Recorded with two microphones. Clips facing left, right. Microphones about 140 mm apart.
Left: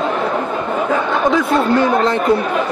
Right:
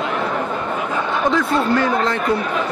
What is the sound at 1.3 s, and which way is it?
Speech, 20° left (ahead or behind).